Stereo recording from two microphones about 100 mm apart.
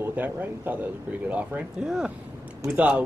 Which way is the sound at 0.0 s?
20° right (ahead or behind).